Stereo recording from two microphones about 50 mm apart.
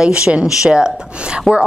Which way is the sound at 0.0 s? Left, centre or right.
Centre.